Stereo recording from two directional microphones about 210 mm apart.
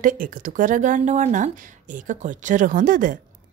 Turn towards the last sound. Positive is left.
turn(degrees=-40)  # may be behind; listen again after turning